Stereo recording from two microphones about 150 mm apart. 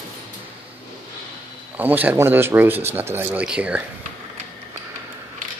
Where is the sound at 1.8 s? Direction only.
10° right (ahead or behind).